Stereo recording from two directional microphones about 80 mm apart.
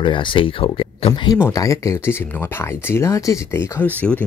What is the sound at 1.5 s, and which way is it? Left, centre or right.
Speech, left.